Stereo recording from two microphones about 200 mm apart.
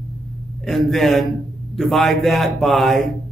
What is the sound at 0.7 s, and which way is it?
A man's voice, centre (ahead or behind).